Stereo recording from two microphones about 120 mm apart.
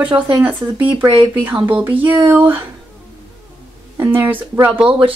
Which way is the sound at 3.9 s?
20° right (ahead or behind).